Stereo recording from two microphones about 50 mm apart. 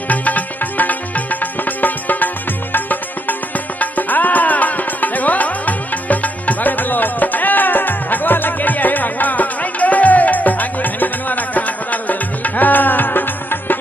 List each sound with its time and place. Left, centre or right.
0.1 s music: left